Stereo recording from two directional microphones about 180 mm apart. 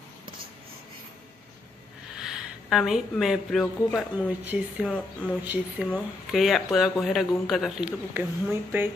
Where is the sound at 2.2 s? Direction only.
Centre (ahead or behind).